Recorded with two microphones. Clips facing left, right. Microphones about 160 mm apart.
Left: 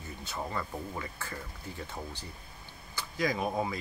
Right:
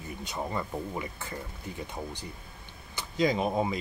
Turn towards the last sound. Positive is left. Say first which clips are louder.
# right 4 dB
turn(degrees=-20)  # may be behind; listen again after turning